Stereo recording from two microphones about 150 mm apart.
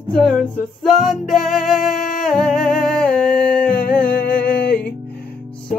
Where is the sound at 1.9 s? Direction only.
60° left (ahead or behind).